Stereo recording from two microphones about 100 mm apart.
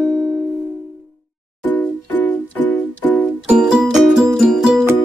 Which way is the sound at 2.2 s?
15° left (ahead or behind).